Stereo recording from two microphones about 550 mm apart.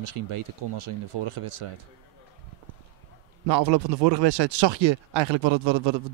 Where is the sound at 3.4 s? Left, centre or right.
Right.